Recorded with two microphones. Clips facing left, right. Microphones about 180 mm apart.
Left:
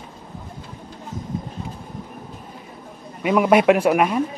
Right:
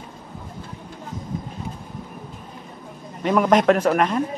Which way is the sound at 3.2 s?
10° left (ahead or behind).